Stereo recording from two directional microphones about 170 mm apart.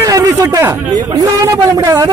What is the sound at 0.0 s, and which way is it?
A man's voice, 20° right (ahead or behind).